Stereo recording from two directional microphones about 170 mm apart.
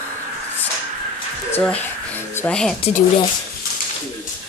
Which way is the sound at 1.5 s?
10° left (ahead or behind).